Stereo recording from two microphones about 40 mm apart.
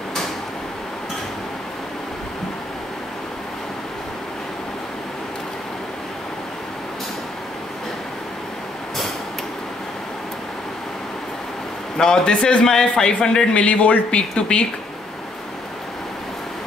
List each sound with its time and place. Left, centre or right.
12.0 s a man's voice: centre
12.6 s speech: centre
13.6 s speech: left
14.1 s a man's voice: left